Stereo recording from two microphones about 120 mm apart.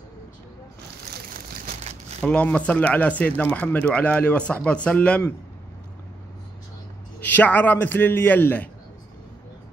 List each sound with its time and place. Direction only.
2.2 s speech: 10° left (ahead or behind)
7.3 s speech: 15° left (ahead or behind)